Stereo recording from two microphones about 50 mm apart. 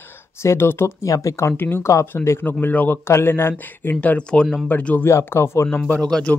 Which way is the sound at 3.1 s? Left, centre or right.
Left.